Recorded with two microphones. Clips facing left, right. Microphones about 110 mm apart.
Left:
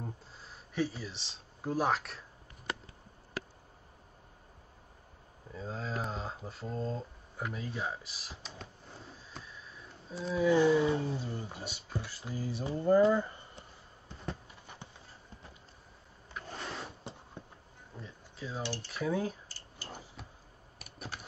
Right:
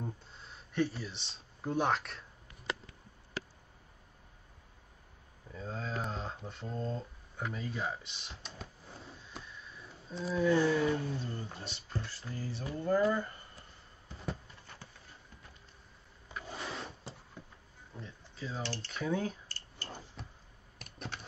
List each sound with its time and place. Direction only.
0.0 s speech: centre (ahead or behind)
5.5 s speech: 5° left (ahead or behind)
10.6 s speech: 15° left (ahead or behind)
11.1 s speech: 10° left (ahead or behind)
14.0 s a sound: centre (ahead or behind)
14.7 s clip-clop: 15° left (ahead or behind)
16.4 s rub: 5° right (ahead or behind)
17.9 s cutlery: 5° left (ahead or behind)
20.8 s clicking: 5° left (ahead or behind)